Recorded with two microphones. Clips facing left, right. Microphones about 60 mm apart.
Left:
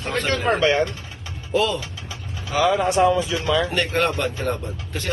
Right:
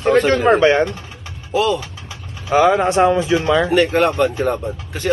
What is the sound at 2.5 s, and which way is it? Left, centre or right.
Speech, right.